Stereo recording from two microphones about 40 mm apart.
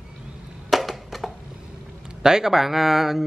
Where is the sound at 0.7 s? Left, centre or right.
Centre.